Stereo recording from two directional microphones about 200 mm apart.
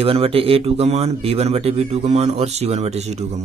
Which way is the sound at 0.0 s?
30° right (ahead or behind).